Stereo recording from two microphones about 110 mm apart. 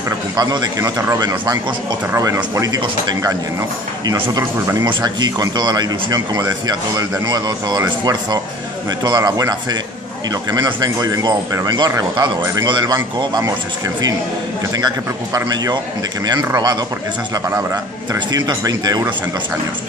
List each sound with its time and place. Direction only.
0.4 s speech: 35° right (ahead or behind)
2.1 s speech: 25° right (ahead or behind)
12.6 s speech: 40° right (ahead or behind)
15.3 s speech: 35° right (ahead or behind)
18.1 s speech: 35° right (ahead or behind)